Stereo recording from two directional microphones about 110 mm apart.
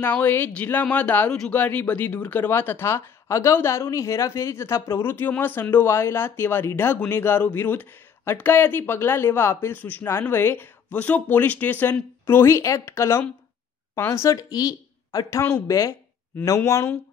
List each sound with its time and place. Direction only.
0.0 s speech: 15° left (ahead or behind)